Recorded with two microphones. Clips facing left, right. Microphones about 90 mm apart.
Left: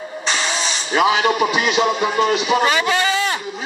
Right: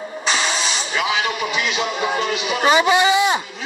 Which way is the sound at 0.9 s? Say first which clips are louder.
Left 7 dB; 45° left (ahead or behind).